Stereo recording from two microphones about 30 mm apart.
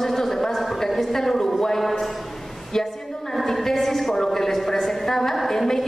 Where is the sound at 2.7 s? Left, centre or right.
Centre.